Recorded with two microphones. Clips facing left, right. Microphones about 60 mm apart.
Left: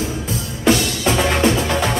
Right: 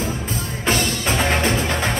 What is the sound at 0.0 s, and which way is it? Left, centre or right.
Music, right.